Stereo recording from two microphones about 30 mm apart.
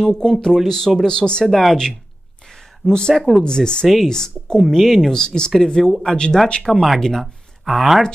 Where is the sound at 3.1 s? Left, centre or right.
Centre.